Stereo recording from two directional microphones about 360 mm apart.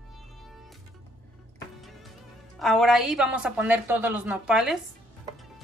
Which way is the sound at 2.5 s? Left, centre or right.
Centre.